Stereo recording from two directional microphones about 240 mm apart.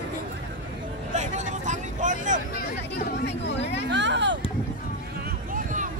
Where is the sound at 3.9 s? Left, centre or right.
Right.